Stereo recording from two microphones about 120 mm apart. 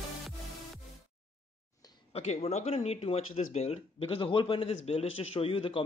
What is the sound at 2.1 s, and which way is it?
Speech, 65° left (ahead or behind).